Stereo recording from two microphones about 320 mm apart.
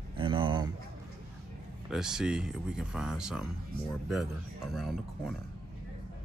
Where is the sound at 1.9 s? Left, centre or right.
Centre.